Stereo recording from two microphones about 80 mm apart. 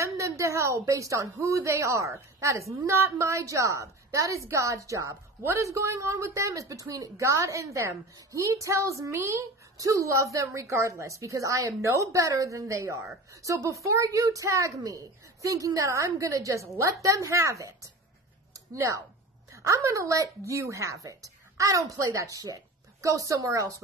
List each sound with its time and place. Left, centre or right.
0.0 s speech: right
18.5 s a sound: right
19.5 s speech: right